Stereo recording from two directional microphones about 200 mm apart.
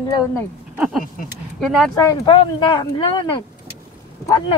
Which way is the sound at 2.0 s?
15° left (ahead or behind).